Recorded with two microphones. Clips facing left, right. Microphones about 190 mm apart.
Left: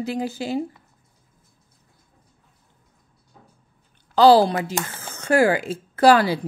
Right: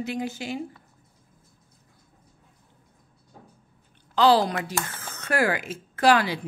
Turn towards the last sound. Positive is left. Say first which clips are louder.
# left 5 dB
turn(degrees=35)  # may be behind; listen again after turning